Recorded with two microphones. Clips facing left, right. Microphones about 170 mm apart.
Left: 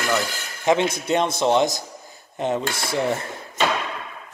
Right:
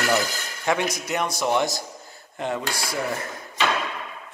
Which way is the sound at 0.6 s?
25° left (ahead or behind).